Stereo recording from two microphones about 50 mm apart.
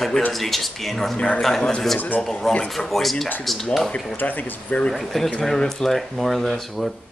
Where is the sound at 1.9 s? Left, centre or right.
Left.